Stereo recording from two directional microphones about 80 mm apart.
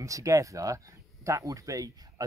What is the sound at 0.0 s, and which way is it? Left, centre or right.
Speech, right.